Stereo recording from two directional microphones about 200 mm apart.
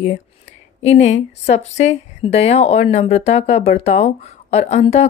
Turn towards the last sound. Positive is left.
turn(degrees=30)  # may be behind; listen again after turning